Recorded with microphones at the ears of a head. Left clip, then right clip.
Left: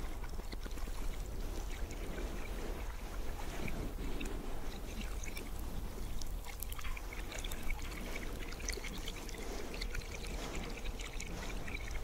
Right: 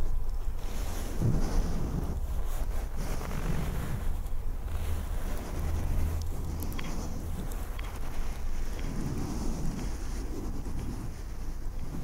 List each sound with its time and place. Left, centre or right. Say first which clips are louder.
1.2 s boat: right 13 dB; right
3.1 s vehicle: right 11 dB; right
8.8 s pour: right 7 dB; right